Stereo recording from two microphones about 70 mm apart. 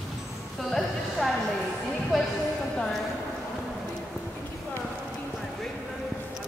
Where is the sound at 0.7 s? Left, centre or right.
Centre.